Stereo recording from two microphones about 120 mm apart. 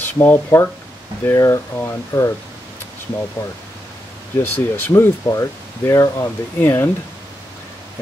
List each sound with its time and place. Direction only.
0.0 s speech: 15° left (ahead or behind)
4.4 s speech: 20° left (ahead or behind)